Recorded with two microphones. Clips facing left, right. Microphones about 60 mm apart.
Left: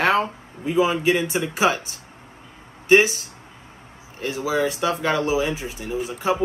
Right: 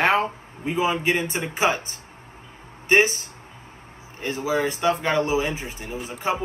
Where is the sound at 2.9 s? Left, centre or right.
Right.